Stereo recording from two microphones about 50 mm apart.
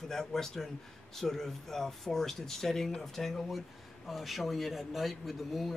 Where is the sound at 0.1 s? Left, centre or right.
Centre.